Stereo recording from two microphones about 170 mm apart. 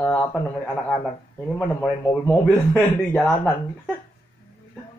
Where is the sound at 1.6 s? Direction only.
10° left (ahead or behind).